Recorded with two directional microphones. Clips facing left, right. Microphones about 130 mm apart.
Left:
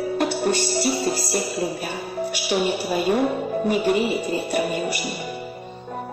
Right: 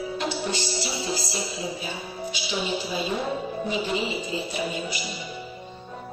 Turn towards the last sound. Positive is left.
turn(degrees=60)  # may be behind; listen again after turning